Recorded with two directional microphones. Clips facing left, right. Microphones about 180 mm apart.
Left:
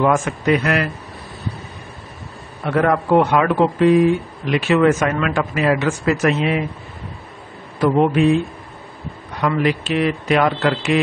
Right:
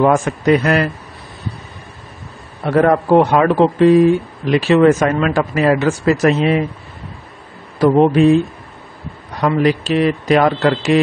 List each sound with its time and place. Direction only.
0.0 s speech: 35° right (ahead or behind)
2.6 s speech: 35° right (ahead or behind)
7.8 s speech: 35° right (ahead or behind)
9.4 s speech: 35° right (ahead or behind)